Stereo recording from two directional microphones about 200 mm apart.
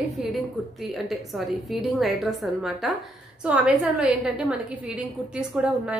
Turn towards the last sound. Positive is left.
turn(degrees=-5)  # may be behind; listen again after turning